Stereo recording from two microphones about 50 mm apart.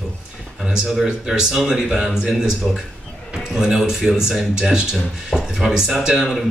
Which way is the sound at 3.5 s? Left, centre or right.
Centre.